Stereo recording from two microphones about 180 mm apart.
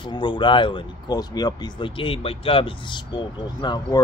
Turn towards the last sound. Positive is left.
turn(degrees=25)  # may be behind; listen again after turning